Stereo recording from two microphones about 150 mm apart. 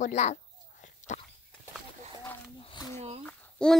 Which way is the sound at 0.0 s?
50° left (ahead or behind).